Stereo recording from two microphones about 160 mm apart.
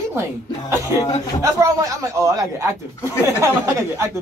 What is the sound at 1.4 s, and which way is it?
Speech, 20° right (ahead or behind).